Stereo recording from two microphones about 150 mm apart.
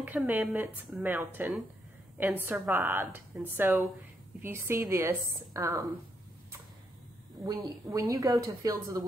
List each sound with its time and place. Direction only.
0.0 s a woman's voice: 10° right (ahead or behind)
7.4 s a woman's voice: 25° right (ahead or behind)